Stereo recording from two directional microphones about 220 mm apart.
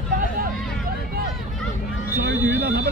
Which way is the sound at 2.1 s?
50° right (ahead or behind).